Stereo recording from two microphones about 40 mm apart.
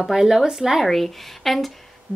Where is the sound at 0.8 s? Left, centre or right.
Centre.